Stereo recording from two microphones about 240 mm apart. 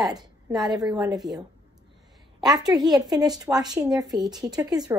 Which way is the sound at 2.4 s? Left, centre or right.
Centre.